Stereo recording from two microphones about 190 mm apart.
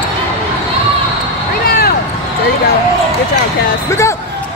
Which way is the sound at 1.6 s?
50° left (ahead or behind).